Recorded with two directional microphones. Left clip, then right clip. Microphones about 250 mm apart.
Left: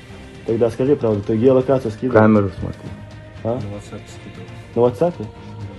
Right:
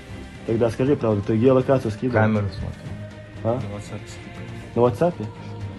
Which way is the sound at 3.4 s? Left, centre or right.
Centre.